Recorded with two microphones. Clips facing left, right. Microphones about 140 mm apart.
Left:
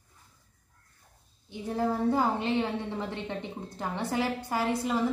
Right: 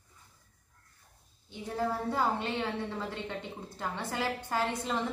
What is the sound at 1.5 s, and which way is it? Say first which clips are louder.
A woman's voice: left 3 dB; 15° left (ahead or behind).